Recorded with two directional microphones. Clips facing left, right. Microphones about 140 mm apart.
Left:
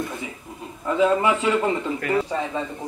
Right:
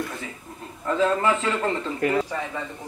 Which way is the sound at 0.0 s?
20° left (ahead or behind).